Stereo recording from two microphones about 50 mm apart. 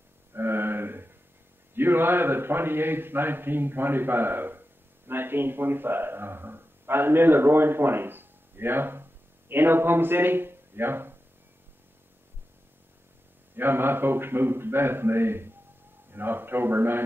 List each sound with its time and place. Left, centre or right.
0.3 s a sound: right
1.8 s a man's voice: right
13.6 s a man's voice: right